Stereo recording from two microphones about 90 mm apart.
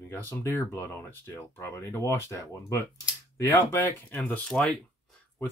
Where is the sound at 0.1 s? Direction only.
25° left (ahead or behind).